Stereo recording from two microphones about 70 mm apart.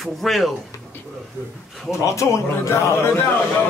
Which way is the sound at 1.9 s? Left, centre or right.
Left.